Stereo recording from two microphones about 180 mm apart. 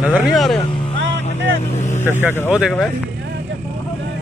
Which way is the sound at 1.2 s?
40° left (ahead or behind).